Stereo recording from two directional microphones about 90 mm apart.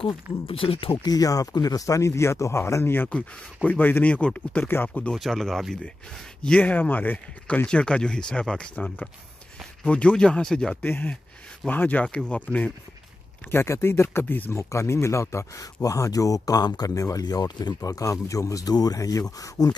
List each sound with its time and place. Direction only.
0.0 s speech: 90° left
1.0 s speech: 45° left (ahead or behind); by 5.1 s 20° left (ahead or behind)
5.1 s speech: 5° left (ahead or behind)
6.6 s speech: 20° left (ahead or behind)
10.8 s speech: 20° left (ahead or behind); by 17.7 s 50° left (ahead or behind)
17.7 s speech: 40° left (ahead or behind)